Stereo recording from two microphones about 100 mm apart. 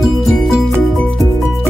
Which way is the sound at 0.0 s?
Centre (ahead or behind).